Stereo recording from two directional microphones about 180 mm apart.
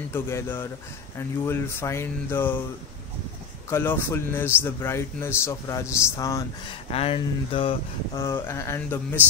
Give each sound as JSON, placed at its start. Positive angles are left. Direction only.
{"t": 0.1, "sound": "a man's voice", "side_deg": 15}
{"t": 3.7, "sound": "a man's voice", "side_deg": 10}
{"t": 6.9, "sound": "speech", "side_deg": 35}
{"t": 8.2, "sound": "a man's voice", "side_deg": 15}